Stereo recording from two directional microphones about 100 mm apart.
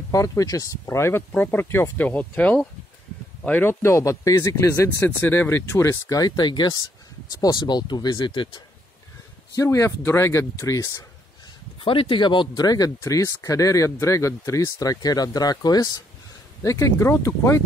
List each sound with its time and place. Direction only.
0.1 s speech: 35° left (ahead or behind)
1.3 s speech: 15° left (ahead or behind); by 8.6 s 55° left (ahead or behind)
9.6 s speech: 30° left (ahead or behind)
11.8 s speech: 60° left (ahead or behind); by 17.6 s 30° left (ahead or behind)